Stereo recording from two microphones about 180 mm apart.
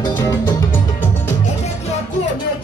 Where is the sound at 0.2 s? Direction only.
20° left (ahead or behind).